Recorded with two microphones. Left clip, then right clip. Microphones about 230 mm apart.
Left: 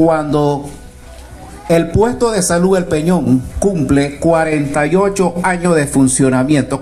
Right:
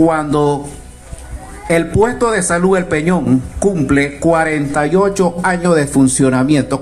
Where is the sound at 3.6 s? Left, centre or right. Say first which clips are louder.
Right 1 dB; left.